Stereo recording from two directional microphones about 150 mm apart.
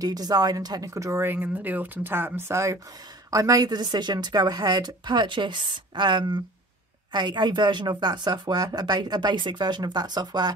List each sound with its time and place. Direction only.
0.0 s a woman's voice: 25° right (ahead or behind)